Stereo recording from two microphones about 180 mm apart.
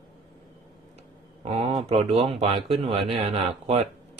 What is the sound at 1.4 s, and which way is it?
Speech, 35° right (ahead or behind).